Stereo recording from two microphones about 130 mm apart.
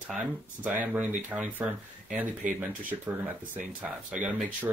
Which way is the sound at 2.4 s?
80° right.